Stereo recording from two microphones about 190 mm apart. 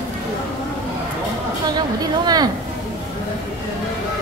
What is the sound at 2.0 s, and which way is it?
Speech, 20° right (ahead or behind).